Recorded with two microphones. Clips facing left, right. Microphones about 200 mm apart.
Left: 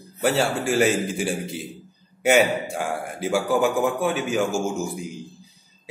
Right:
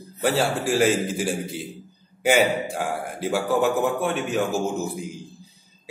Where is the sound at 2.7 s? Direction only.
Centre (ahead or behind).